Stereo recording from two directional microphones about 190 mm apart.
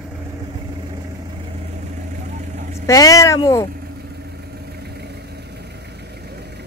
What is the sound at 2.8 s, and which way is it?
Speech, 15° left (ahead or behind).